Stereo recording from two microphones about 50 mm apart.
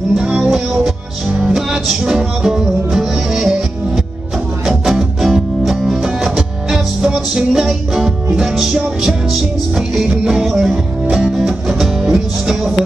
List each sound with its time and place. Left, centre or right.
0.1 s music: centre
1.5 s music: centre
10.0 s music: centre